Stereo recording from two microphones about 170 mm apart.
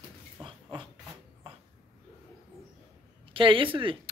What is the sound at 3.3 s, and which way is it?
Speech, 30° right (ahead or behind).